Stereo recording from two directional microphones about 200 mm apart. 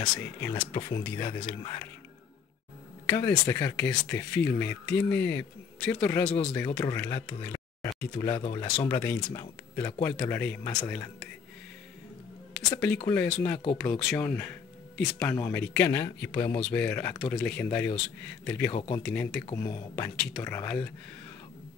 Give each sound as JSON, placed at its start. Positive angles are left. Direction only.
{"t": 0.2, "sound": "speech", "side_deg": 10}
{"t": 3.1, "sound": "speech", "side_deg": 15}
{"t": 8.8, "sound": "speech", "side_deg": 10}
{"t": 12.5, "sound": "speech", "side_deg": 5}
{"t": 18.7, "sound": "speech", "side_deg": 25}
{"t": 19.0, "sound": "speech", "side_deg": 5}